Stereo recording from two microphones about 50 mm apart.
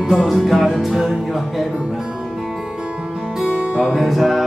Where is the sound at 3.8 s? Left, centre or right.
Centre.